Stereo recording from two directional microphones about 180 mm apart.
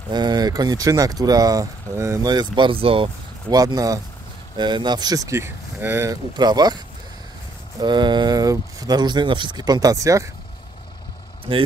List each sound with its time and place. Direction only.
0.1 s speech: 25° right (ahead or behind)
7.8 s speech: 25° right (ahead or behind)